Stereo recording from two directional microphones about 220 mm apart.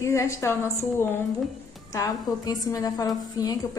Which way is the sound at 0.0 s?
10° left (ahead or behind).